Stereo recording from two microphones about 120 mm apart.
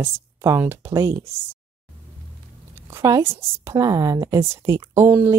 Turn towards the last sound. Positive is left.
turn(degrees=-20)  # may be behind; listen again after turning